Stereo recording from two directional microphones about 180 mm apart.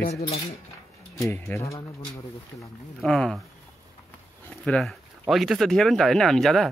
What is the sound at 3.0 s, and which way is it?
Speech, 5° left (ahead or behind).